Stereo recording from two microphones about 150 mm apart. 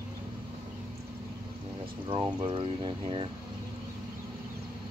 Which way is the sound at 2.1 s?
30° right (ahead or behind).